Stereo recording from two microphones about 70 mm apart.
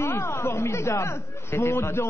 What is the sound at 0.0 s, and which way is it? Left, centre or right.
Chatter, left.